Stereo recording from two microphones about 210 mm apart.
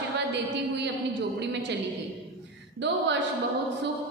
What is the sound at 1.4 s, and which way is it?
Speech, 55° right (ahead or behind).